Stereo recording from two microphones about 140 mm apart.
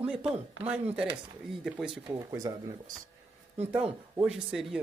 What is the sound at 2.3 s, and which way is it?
Speech, 25° right (ahead or behind).